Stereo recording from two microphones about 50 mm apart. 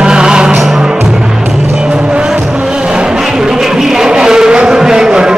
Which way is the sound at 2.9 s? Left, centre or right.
Centre.